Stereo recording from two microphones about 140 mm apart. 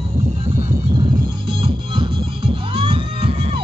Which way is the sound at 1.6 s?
40° right (ahead or behind).